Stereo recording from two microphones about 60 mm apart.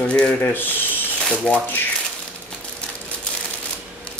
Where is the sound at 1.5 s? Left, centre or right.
Centre.